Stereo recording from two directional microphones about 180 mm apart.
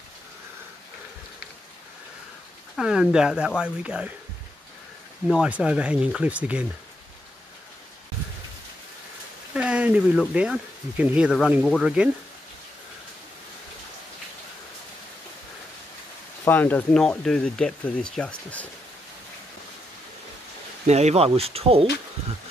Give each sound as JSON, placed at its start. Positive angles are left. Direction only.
{"t": 2.7, "sound": "speech", "side_deg": -5}
{"t": 5.3, "sound": "speech", "side_deg": -5}
{"t": 9.5, "sound": "speech", "side_deg": -5}
{"t": 16.4, "sound": "speech", "side_deg": 10}
{"t": 20.8, "sound": "speech", "side_deg": -40}